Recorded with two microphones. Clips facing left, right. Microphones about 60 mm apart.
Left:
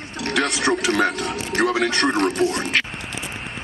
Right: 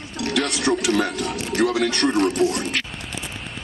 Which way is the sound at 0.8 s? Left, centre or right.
Left.